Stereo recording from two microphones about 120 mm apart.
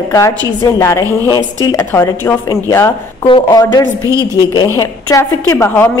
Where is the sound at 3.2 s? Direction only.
40° left (ahead or behind).